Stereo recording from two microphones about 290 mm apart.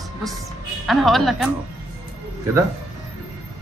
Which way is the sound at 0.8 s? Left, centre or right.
Centre.